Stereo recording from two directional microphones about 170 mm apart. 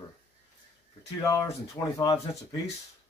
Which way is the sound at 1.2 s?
20° left (ahead or behind).